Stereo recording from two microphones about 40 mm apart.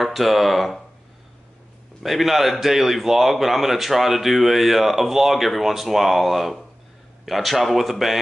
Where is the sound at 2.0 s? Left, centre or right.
Centre.